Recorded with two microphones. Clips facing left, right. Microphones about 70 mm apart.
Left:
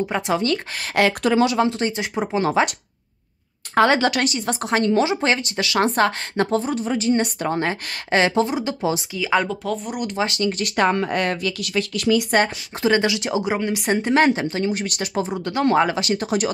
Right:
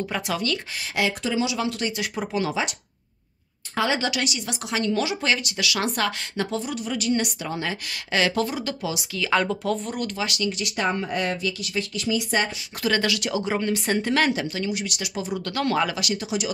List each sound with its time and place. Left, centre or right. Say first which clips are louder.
0.1 s speech: left 5 dB; left
0.9 s speech: left 7 dB; left
1.7 s speech: left 4 dB; left
2.4 s speech: left 10 dB; left
3.7 s a woman's voice: left 7 dB; left
9.1 s speech: left 2 dB; centre
10.1 s a woman's voice: left 8 dB; left
10.6 s speech: left 8 dB; left
12.8 s speech: left 5 dB; left
15.3 s a woman's voice: left 5 dB; left